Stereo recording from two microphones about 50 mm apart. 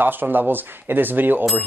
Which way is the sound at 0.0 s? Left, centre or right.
Right.